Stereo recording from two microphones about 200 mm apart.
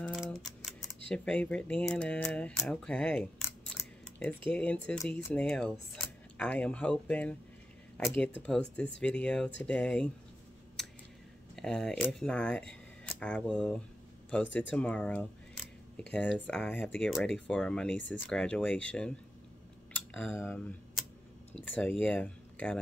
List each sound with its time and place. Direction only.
1.0 s speech: 5° left (ahead or behind)
11.5 s speech: 5° left (ahead or behind)
17.9 s speech: 65° left (ahead or behind)
18.3 s speech: 5° left (ahead or behind)
19.9 s a sound: 10° left (ahead or behind)
21.6 s speech: 5° left (ahead or behind)